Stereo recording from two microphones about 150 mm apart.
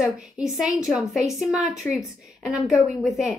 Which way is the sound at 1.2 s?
20° left (ahead or behind).